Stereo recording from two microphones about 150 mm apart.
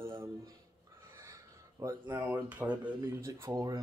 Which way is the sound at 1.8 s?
20° right (ahead or behind).